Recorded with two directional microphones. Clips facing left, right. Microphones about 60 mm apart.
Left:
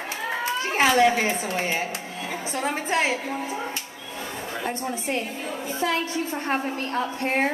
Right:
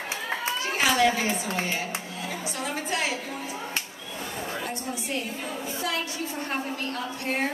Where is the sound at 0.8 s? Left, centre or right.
Left.